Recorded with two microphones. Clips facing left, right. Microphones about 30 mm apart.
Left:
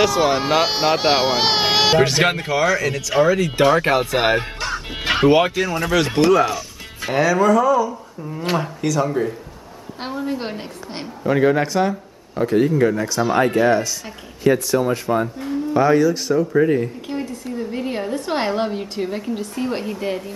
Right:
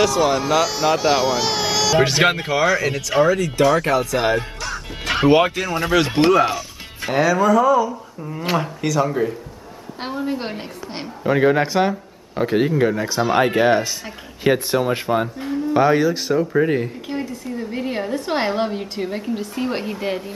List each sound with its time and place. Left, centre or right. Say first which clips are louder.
0.0 s speech: even; centre
0.3 s speech: left 1 dB; left
2.0 s a woman's voice: even; centre
3.3 s speech: left 1 dB; centre
3.5 s speech: left 2 dB; left
5.2 s a woman's voice: even; centre; by 15.0 s right
15.0 s speech: even; centre
16.8 s a woman's voice: even; centre